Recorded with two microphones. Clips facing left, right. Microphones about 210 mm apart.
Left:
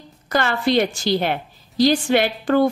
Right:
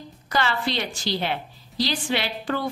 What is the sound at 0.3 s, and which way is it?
A woman's voice, 50° left (ahead or behind).